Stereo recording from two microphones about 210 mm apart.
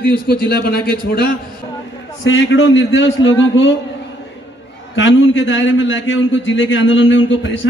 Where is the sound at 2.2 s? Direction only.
65° left (ahead or behind).